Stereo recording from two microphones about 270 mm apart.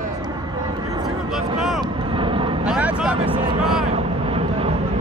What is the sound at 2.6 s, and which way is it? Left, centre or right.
Vehicle, centre.